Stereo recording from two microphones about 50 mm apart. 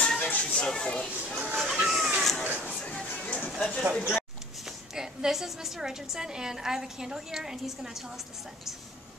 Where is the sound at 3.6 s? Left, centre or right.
Centre.